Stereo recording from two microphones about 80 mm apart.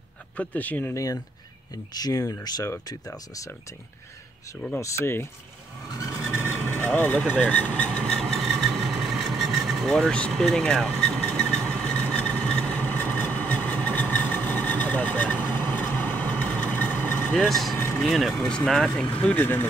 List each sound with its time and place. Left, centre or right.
0.4 s speech: left
0.9 s speech: left
2.0 s speech: left
4.7 s speech: left
6.5 s speech: left
8.0 s vehicle: centre; by 17.4 s left
17.4 s speech: centre
17.7 s vehicle: left
18.0 s speech: centre
19.2 s speech: left